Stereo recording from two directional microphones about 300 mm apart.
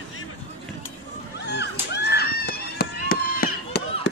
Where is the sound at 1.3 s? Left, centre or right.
Left.